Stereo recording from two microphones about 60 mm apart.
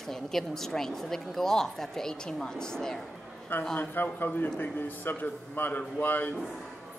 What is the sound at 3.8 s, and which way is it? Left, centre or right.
A man's voice, left.